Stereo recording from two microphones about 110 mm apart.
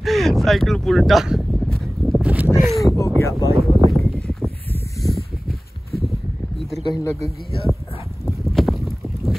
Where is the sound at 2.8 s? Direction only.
30° left (ahead or behind).